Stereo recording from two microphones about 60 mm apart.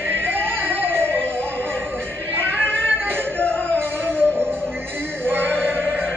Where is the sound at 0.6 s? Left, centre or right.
Right.